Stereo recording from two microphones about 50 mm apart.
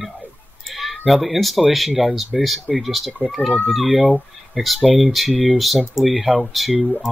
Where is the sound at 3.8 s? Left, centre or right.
Right.